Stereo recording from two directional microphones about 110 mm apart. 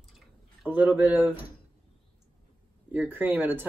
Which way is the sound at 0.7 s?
15° right (ahead or behind).